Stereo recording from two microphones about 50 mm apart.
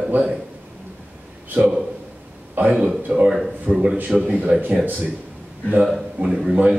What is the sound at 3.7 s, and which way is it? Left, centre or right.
Speech, centre.